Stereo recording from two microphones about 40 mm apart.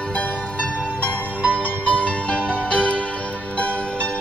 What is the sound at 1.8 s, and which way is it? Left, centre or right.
Music, left.